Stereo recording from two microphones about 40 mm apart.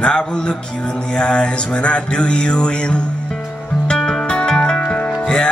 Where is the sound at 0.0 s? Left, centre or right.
Left.